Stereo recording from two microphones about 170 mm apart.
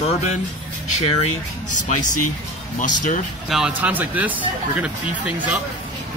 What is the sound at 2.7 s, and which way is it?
Speech, 45° left (ahead or behind).